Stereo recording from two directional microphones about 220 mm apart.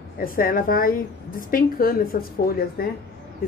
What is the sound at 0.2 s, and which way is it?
A woman's voice, 40° left (ahead or behind).